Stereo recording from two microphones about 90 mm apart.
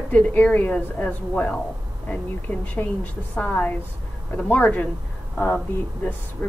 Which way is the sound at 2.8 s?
25° left (ahead or behind).